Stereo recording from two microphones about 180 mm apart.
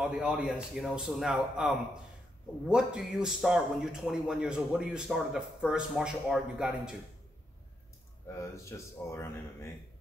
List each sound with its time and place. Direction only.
0.0 s a man's voice: centre (ahead or behind)
8.3 s speech: 15° left (ahead or behind)